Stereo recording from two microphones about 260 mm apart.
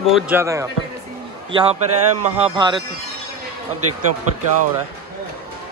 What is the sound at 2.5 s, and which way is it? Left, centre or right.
Speech, centre.